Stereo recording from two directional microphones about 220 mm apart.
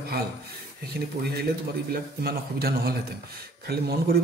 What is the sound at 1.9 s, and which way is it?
Speech, 45° right (ahead or behind).